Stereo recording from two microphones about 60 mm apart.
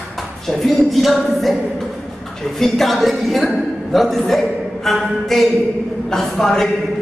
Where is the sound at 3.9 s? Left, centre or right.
Centre.